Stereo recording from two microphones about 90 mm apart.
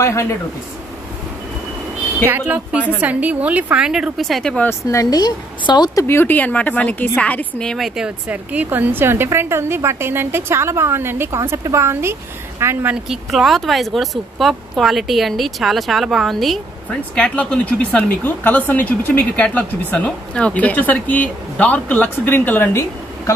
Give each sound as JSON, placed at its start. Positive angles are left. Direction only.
{"t": 0.0, "sound": "speech", "side_deg": 30}
{"t": 2.2, "sound": "a woman's voice", "side_deg": -20}
{"t": 4.8, "sound": "a woman's voice", "side_deg": 45}
{"t": 5.9, "sound": "speech", "side_deg": 25}
{"t": 8.3, "sound": "a woman's voice", "side_deg": -15}
{"t": 13.1, "sound": "speech", "side_deg": 0}